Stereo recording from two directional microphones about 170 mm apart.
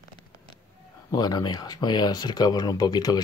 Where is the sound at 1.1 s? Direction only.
25° left (ahead or behind).